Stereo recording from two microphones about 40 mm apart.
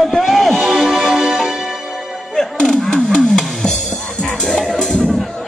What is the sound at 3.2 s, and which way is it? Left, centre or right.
Music, centre.